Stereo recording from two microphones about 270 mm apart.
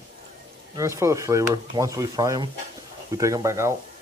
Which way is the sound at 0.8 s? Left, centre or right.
Centre.